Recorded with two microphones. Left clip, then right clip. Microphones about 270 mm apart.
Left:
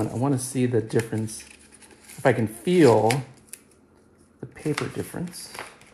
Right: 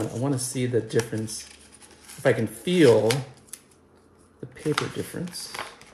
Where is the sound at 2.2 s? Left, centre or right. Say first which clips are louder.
Left 1 dB; centre.